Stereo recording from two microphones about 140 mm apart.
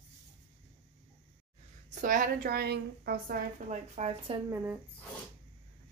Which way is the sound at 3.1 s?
90° right.